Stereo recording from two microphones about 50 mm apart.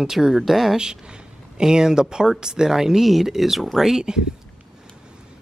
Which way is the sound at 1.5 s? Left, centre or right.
Centre.